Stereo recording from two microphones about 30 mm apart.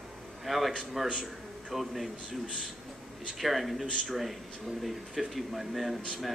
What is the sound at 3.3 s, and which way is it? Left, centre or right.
Speech, centre.